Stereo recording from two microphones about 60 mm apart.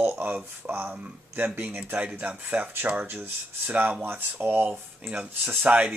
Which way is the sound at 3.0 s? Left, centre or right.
Right.